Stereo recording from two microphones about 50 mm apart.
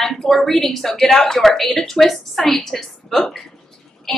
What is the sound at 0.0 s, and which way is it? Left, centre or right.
A woman's voice, centre.